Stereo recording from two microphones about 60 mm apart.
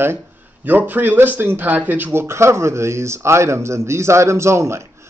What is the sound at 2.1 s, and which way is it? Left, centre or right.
A man's voice, right.